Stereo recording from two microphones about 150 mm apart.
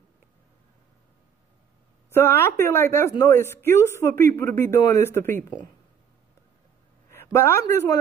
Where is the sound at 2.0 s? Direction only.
15° left (ahead or behind).